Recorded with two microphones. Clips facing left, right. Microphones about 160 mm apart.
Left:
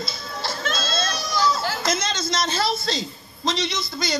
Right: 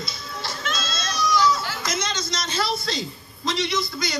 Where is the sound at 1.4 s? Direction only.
30° left (ahead or behind).